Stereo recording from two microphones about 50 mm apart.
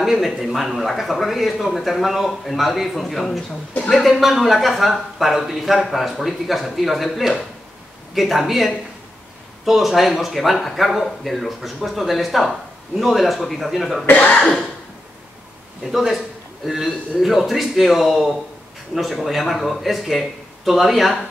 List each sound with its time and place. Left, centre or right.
0.0 s speech: centre
14.0 s speech: left
15.8 s speech: centre